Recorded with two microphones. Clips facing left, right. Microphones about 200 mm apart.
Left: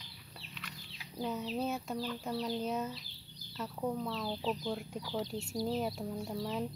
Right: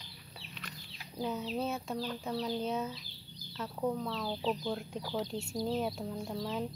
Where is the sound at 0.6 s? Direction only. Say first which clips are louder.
Right 2 dB; 45° right (ahead or behind).